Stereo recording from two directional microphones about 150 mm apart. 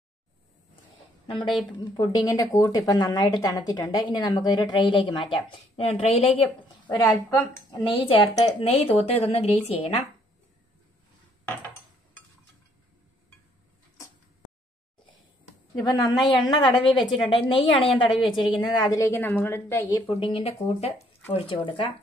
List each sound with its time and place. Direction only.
1.2 s a woman's voice: 30° left (ahead or behind)
7.2 s a woman's voice: 20° left (ahead or behind)
8.6 s speech: 40° left (ahead or behind)
15.8 s a woman's voice: 30° left (ahead or behind)
18.8 s a woman's voice: 25° left (ahead or behind)
20.1 s speech: 35° left (ahead or behind)